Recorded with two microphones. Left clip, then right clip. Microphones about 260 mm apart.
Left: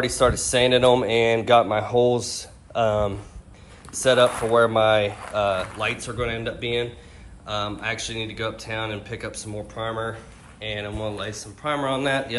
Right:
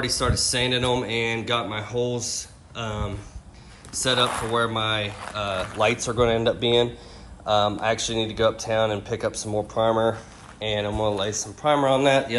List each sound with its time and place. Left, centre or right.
0.0 s speech: centre
5.8 s speech: centre